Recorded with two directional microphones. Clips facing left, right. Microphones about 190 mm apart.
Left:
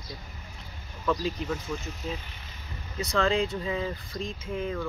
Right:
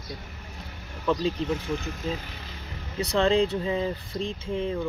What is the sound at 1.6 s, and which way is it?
Speech, 60° right (ahead or behind).